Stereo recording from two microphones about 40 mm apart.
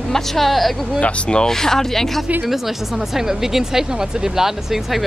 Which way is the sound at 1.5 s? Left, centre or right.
Centre.